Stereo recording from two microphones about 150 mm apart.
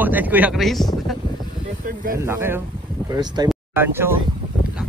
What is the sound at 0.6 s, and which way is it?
Speech, centre (ahead or behind).